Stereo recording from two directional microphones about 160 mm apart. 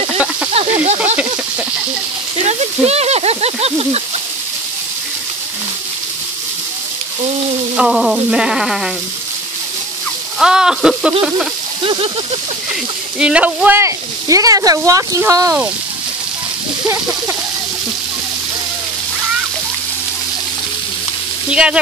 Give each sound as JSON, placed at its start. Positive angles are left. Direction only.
{"t": 2.4, "sound": "a sound", "side_deg": -40}
{"t": 7.7, "sound": "sheep", "side_deg": -5}
{"t": 10.4, "sound": "sheep", "side_deg": -5}
{"t": 11.8, "sound": "speech", "side_deg": -35}
{"t": 13.2, "sound": "speech", "side_deg": -5}
{"t": 21.5, "sound": "sheep", "side_deg": -5}